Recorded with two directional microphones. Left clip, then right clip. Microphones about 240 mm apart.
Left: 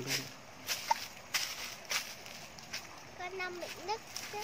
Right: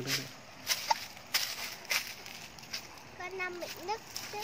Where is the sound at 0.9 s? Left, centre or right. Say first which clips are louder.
Even; right.